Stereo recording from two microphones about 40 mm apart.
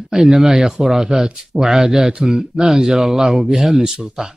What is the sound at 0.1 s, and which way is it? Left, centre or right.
Speech, centre.